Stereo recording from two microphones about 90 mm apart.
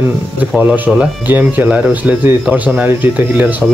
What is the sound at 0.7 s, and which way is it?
Speech, 15° right (ahead or behind).